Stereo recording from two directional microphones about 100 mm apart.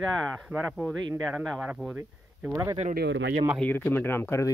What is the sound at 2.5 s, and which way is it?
Speech, 30° right (ahead or behind).